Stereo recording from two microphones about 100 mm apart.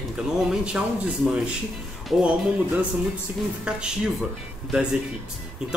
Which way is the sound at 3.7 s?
10° right (ahead or behind).